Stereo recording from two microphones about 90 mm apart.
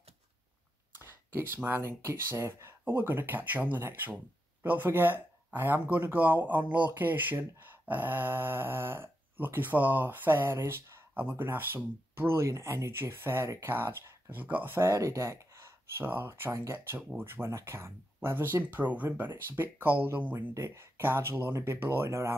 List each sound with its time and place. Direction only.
0.9 s speech: 25° right (ahead or behind)
14.9 s speech: 35° right (ahead or behind)
20.5 s speech: 30° right (ahead or behind)